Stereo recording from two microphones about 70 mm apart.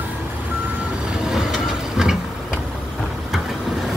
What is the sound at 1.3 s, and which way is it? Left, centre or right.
Vehicle, centre.